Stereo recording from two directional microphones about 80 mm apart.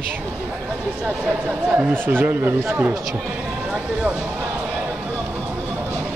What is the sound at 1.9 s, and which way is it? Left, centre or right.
Speech, right.